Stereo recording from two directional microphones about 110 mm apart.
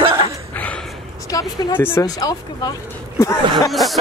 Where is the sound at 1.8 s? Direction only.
25° left (ahead or behind).